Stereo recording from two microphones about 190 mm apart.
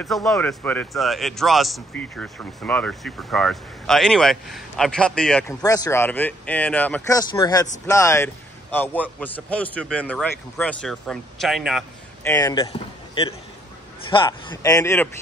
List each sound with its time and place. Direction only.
0.0 s speech: centre (ahead or behind)
5.5 s a man's voice: 20° left (ahead or behind); by 11.8 s centre (ahead or behind)
12.2 s speech: 15° left (ahead or behind)
12.7 s a man's voice: 25° left (ahead or behind)